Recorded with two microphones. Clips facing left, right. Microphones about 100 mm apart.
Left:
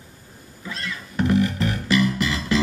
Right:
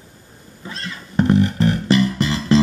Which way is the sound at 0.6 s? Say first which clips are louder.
Even; 30° right (ahead or behind).